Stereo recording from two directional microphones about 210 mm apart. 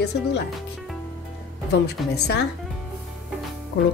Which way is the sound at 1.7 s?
50° left (ahead or behind).